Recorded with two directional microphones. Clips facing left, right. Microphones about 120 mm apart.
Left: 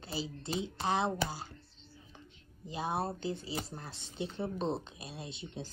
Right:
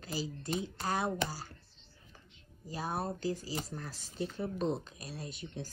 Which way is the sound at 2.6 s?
25° left (ahead or behind).